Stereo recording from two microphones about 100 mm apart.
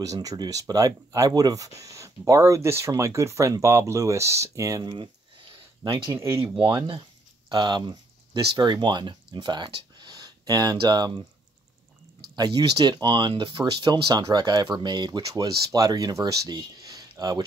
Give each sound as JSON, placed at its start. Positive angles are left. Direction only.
{"t": 0.0, "sound": "speech", "side_deg": -35}
{"t": 6.1, "sound": "speech", "side_deg": -25}
{"t": 6.7, "sound": "speech", "side_deg": -50}
{"t": 12.4, "sound": "speech", "side_deg": -45}
{"t": 16.5, "sound": "a sound", "side_deg": -40}
{"t": 17.1, "sound": "speech", "side_deg": -45}